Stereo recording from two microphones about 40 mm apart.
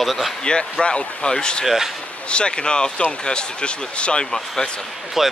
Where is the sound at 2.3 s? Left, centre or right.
Left.